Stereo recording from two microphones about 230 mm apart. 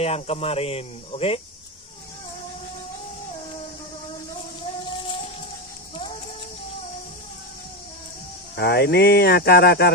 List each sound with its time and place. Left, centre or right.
0.0 s speech: left
8.5 s speech: left